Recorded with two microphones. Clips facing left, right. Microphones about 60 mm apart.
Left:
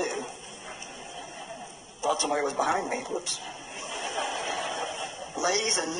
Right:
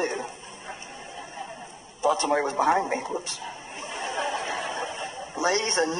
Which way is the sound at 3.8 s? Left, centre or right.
Right.